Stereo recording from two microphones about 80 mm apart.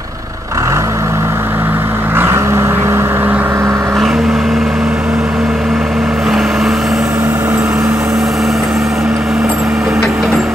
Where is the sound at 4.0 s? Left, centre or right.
Centre.